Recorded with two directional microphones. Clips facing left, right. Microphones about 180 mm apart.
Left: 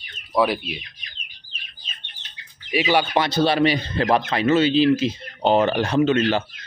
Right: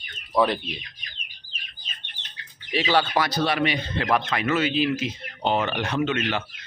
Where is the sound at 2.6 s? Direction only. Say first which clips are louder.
Left 2 dB; 10° left (ahead or behind).